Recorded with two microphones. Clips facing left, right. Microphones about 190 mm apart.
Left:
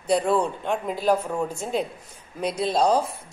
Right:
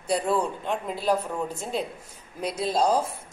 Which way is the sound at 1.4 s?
45° left (ahead or behind).